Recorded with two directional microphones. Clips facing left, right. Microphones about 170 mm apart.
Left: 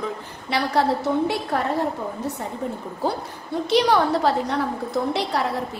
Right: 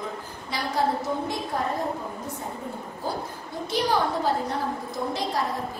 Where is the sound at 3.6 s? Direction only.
70° left (ahead or behind).